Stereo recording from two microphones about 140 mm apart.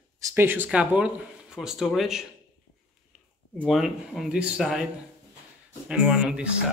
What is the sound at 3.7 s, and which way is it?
Speech, centre (ahead or behind).